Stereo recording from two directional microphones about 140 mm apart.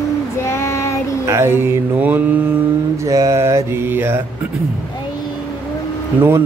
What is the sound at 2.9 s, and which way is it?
Mantra, 25° right (ahead or behind).